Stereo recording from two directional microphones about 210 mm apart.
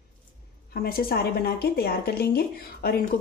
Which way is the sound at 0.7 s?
45° left (ahead or behind).